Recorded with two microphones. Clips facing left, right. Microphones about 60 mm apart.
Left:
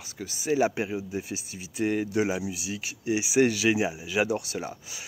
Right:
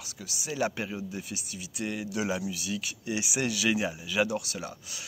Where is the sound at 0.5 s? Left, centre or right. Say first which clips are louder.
Left 5 dB; centre; by 2.3 s left.